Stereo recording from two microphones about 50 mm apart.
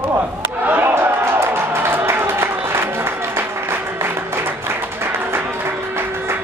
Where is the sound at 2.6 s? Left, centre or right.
Right.